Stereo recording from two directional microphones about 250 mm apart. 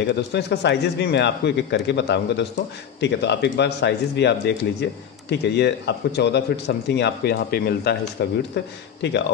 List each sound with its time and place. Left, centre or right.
0.0 s a man's voice: left